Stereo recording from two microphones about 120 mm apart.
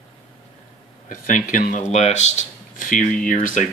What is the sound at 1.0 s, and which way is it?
Speech, 90° left.